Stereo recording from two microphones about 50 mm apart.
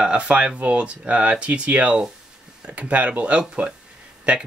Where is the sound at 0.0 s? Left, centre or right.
Right.